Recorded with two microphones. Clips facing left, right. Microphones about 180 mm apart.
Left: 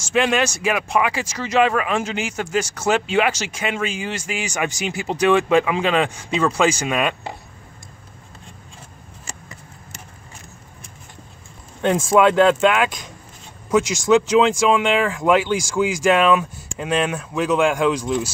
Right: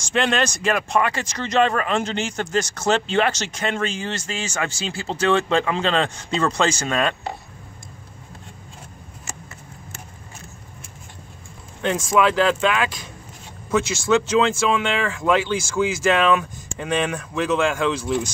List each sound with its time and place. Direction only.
0.1 s speech: 5° left (ahead or behind)
12.0 s speech: 25° left (ahead or behind)